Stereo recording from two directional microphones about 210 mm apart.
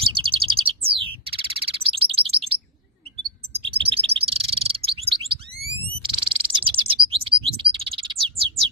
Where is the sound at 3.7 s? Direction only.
25° right (ahead or behind).